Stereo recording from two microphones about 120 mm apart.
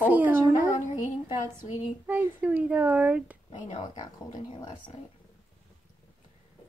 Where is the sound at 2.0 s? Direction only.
15° right (ahead or behind).